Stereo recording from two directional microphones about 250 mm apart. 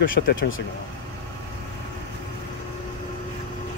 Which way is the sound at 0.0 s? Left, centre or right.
Left.